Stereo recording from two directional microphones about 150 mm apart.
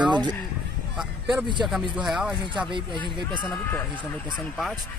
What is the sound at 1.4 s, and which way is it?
Speech, 30° right (ahead or behind).